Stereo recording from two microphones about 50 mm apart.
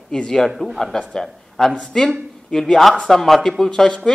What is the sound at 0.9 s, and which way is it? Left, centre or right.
A man's voice, centre.